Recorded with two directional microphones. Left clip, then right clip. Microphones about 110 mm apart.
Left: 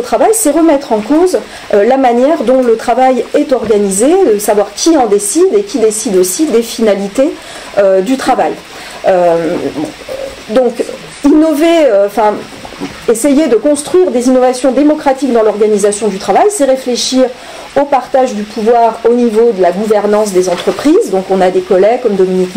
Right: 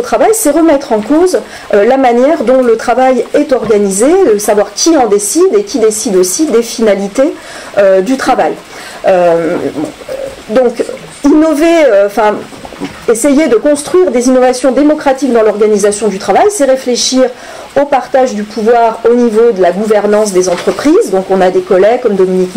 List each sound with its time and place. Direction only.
0.0 s speech: 5° left (ahead or behind)
11.2 s speech: 5° left (ahead or behind)